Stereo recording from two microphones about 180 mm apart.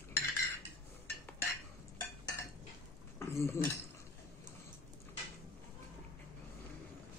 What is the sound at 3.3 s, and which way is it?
Speech, 15° left (ahead or behind).